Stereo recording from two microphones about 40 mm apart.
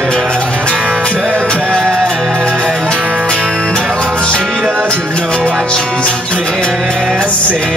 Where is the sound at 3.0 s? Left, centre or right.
Right.